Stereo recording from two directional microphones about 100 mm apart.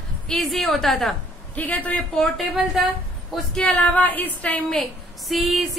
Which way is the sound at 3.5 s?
5° left (ahead or behind).